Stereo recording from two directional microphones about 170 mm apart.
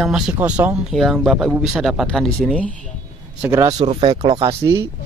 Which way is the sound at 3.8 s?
35° right (ahead or behind).